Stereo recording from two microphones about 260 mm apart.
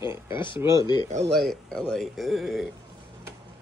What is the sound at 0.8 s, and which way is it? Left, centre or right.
Speech, centre.